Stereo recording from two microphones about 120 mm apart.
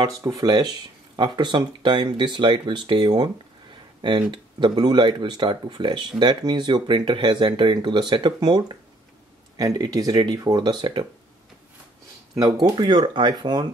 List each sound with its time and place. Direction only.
0.2 s speech: 30° right (ahead or behind)
4.3 s speech: 40° right (ahead or behind)
12.4 s speech: 35° right (ahead or behind)